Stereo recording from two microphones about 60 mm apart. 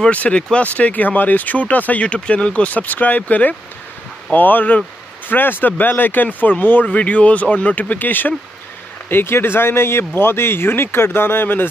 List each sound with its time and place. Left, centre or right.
0.0 s speech: left
9.1 s speech: left